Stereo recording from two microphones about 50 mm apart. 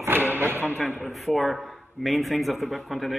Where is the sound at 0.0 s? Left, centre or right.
Right.